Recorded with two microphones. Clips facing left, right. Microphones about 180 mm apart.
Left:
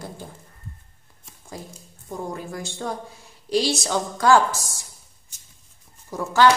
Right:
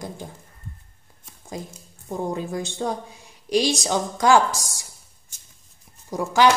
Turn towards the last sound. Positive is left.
turn(degrees=-15)  # may be behind; listen again after turning